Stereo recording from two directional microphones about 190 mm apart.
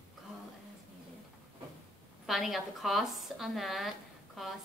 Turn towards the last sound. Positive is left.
turn(degrees=0)  # may be behind; listen again after turning